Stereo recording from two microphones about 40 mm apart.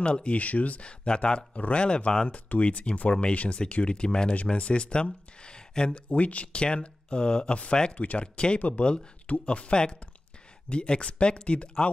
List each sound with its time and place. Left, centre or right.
0.0 s speech: left
6.0 s speech: left; by 7.5 s centre
8.0 s speech: left